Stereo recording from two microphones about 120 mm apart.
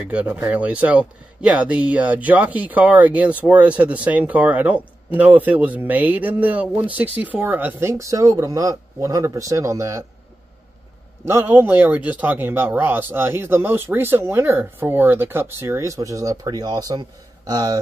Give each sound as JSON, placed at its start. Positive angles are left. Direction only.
{"t": 0.0, "sound": "speech", "side_deg": -10}
{"t": 11.2, "sound": "speech", "side_deg": -20}